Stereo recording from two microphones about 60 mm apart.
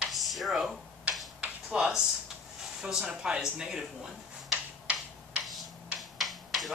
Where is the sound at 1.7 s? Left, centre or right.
Centre.